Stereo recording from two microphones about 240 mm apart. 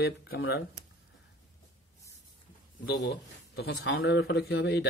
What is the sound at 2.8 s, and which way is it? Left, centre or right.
A man's voice, left.